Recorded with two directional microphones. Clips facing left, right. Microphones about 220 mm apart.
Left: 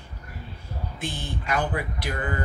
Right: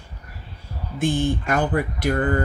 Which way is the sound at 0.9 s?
50° right (ahead or behind).